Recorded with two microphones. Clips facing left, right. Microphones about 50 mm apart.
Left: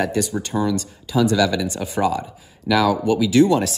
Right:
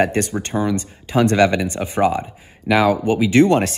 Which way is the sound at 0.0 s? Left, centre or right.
Right.